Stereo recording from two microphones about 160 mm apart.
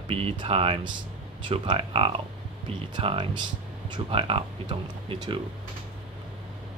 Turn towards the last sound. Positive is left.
turn(degrees=-30)  # may be behind; listen again after turning